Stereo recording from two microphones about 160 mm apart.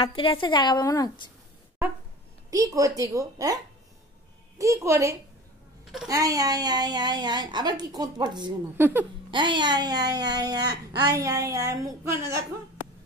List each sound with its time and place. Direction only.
0.0 s a woman's voice: 30° left (ahead or behind)
2.5 s speech: 20° right (ahead or behind)
8.7 s speech: 15° right (ahead or behind)
9.3 s speech: 30° right (ahead or behind)